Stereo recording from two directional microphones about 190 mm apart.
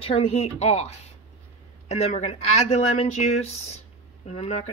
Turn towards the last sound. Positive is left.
turn(degrees=35)  # may be behind; listen again after turning